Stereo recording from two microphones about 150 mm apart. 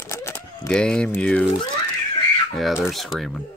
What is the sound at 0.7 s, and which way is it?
Speech, 5° left (ahead or behind).